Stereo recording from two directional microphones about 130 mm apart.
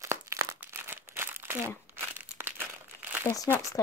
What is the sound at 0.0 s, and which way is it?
Crumpling, 25° right (ahead or behind).